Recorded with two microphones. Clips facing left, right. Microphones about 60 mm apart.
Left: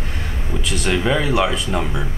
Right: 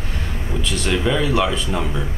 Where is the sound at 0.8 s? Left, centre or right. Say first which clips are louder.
Left 1 dB; centre.